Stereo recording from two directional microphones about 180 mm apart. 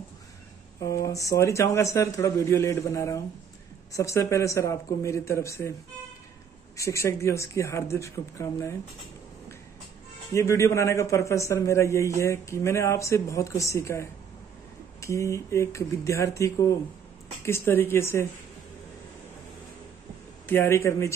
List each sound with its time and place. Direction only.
0.7 s a man's voice: 20° left (ahead or behind)
6.8 s a man's voice: 15° left (ahead or behind)
10.3 s a man's voice: 15° left (ahead or behind)
20.4 s a man's voice: 15° left (ahead or behind)